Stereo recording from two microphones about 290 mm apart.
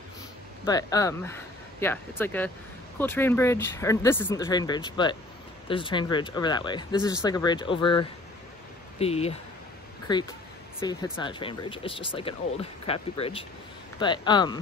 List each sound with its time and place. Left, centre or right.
0.7 s speech: centre
10.8 s speech: centre